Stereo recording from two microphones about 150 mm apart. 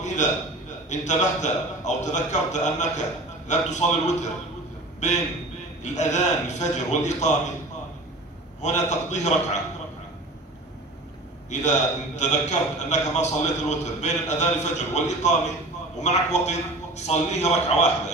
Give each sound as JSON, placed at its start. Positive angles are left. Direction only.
{"t": 0.0, "sound": "a sound", "side_deg": 55}
{"t": 0.8, "sound": "a man's voice", "side_deg": 50}
{"t": 8.5, "sound": "a man's voice", "side_deg": 50}
{"t": 12.2, "sound": "a man's voice", "side_deg": 50}